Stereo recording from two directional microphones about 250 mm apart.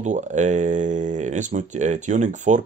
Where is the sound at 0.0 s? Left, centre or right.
Right.